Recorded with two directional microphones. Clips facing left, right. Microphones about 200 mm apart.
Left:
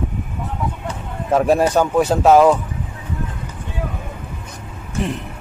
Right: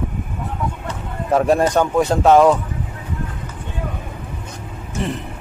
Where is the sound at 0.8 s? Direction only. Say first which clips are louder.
Even; centre (ahead or behind).